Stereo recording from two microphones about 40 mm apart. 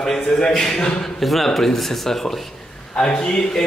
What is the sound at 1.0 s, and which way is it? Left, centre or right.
A man's voice, centre.